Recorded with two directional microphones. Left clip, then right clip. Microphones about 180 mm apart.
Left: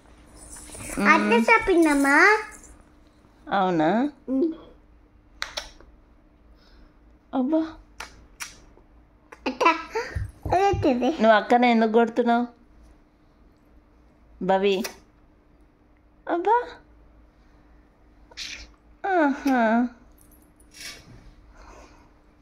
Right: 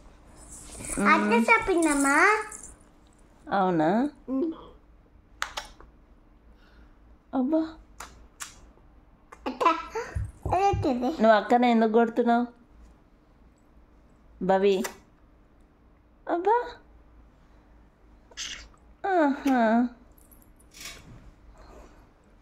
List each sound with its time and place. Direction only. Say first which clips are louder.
1.0 s speech: left 4 dB; centre (ahead or behind)
1.4 s a child's voice: left 4 dB; 35° left (ahead or behind)
3.4 s speech: left 2 dB; 5° right (ahead or behind)
5.4 s computer keyboard: left 1 dB; 20° right (ahead or behind)
7.2 s speech: left 2 dB; 5° right (ahead or behind)
9.3 s babbling: left 3 dB; 40° left (ahead or behind)
10.5 s a child's voice: left 3 dB; 45° left (ahead or behind)
11.1 s speech: left 1 dB; 5° right (ahead or behind)
14.4 s speech: left 1 dB; 5° right (ahead or behind)
16.3 s a woman's voice: left 2 dB; 5° right (ahead or behind)
18.9 s a woman's voice: left 2 dB; 5° right (ahead or behind)